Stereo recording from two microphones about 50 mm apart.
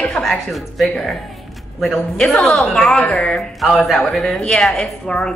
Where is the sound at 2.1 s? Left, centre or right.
Centre.